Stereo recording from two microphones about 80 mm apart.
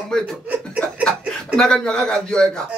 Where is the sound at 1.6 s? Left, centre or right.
Centre.